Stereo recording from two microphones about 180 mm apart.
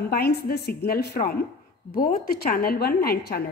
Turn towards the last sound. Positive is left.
turn(degrees=55)  # may be behind; listen again after turning